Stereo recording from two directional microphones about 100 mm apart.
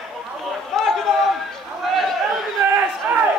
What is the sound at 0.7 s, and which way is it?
Chatter, 5° left (ahead or behind).